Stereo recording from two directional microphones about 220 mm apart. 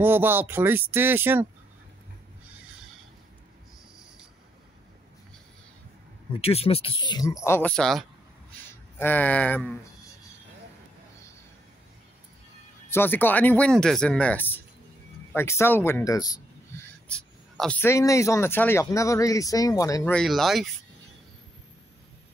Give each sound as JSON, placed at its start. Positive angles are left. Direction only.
{"t": 0.0, "sound": "speech", "side_deg": -10}
{"t": 6.4, "sound": "speech", "side_deg": 25}
{"t": 12.9, "sound": "speech", "side_deg": 10}
{"t": 17.1, "sound": "speech", "side_deg": 5}
{"t": 20.2, "sound": "speech", "side_deg": 0}